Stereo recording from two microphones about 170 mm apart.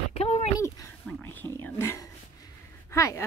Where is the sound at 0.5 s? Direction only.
20° left (ahead or behind).